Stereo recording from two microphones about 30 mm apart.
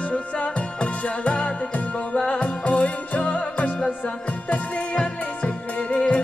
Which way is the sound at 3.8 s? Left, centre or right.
Left.